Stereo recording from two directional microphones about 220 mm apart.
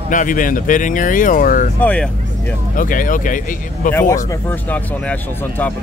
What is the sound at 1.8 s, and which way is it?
Speech, 5° left (ahead or behind).